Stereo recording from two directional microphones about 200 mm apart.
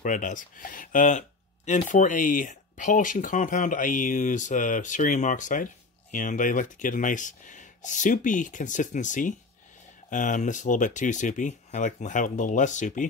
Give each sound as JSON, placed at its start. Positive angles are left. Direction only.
{"t": 0.0, "sound": "speech", "side_deg": 40}